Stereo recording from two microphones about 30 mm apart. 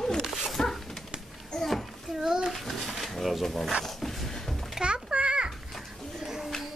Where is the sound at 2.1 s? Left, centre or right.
Centre.